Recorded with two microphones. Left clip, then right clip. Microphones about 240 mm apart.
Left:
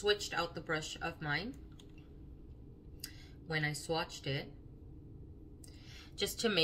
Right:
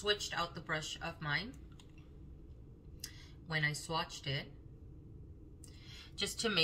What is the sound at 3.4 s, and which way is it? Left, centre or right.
Speech, centre.